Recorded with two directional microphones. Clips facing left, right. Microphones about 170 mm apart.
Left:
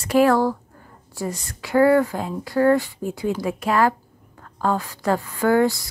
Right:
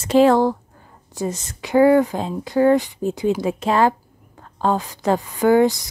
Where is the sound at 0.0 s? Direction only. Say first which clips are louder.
Right 3 dB; 20° right (ahead or behind).